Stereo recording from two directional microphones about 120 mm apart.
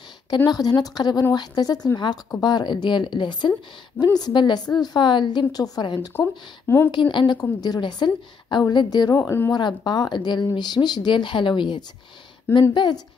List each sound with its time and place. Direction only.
0.5 s speech: 35° left (ahead or behind)
6.1 s speech: 20° left (ahead or behind)
6.9 s speech: 40° left (ahead or behind); by 9.5 s 20° left (ahead or behind)
9.5 s speech: 40° left (ahead or behind)